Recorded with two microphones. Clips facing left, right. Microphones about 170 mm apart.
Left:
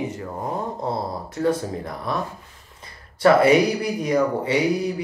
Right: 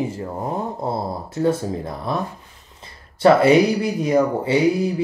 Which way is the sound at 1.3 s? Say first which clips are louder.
Right 2 dB; 25° right (ahead or behind).